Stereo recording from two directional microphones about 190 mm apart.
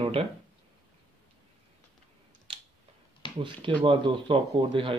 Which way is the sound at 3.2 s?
25° left (ahead or behind).